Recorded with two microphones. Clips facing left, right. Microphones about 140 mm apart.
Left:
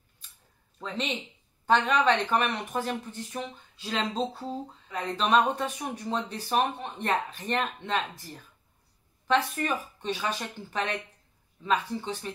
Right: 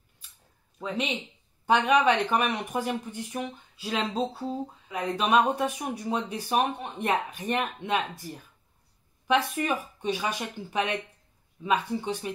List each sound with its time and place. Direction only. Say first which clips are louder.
0.7 s speech: right 2 dB; 10° right (ahead or behind)